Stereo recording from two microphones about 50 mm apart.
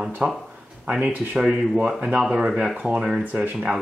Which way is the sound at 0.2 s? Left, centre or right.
Right.